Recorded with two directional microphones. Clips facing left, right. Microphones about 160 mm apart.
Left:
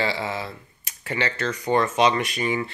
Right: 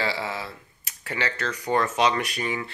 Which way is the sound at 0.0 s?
5° right (ahead or behind).